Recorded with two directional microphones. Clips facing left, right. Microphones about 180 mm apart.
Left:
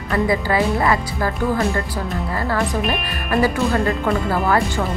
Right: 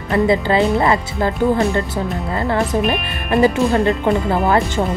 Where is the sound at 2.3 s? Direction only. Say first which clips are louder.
Right 4 dB; 20° right (ahead or behind).